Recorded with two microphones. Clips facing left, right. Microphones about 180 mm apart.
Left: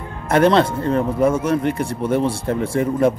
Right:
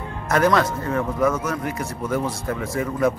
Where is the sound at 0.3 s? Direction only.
30° left (ahead or behind).